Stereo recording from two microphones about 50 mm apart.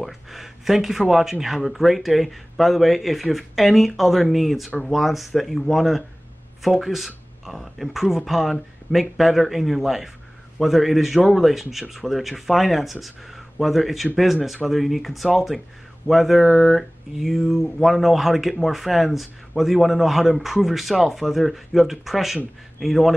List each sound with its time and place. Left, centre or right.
0.0 s speech: centre